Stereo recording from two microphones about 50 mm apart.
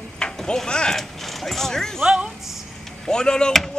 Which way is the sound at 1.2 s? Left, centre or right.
Centre.